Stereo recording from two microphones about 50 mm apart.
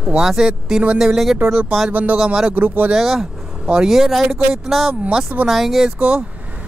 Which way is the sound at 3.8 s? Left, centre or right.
Centre.